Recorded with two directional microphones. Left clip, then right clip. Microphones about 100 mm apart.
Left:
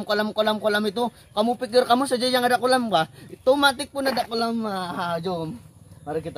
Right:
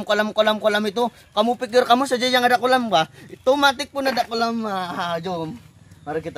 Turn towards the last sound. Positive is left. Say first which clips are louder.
# right 2 dB
turn(degrees=20)  # may be behind; listen again after turning